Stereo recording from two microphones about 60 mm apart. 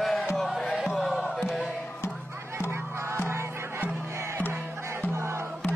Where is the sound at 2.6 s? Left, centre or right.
Right.